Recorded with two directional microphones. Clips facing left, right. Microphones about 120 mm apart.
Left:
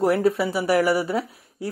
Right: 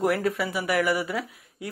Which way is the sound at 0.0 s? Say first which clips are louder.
Left 5 dB; 30° left (ahead or behind).